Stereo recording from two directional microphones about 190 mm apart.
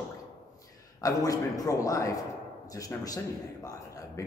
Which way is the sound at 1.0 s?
15° left (ahead or behind).